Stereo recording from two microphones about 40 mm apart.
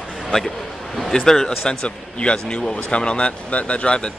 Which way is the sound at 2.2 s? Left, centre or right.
Left.